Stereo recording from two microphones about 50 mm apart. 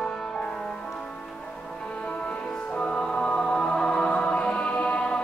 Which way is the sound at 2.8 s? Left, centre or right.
Left.